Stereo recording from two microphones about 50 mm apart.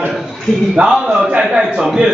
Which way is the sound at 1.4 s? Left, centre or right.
Centre.